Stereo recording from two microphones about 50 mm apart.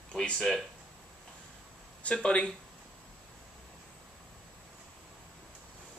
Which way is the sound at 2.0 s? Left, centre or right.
Left.